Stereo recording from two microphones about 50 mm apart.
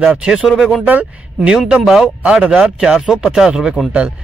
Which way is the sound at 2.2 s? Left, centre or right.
Centre.